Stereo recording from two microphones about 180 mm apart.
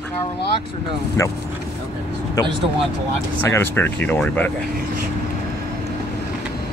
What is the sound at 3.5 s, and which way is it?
Speech, 10° left (ahead or behind).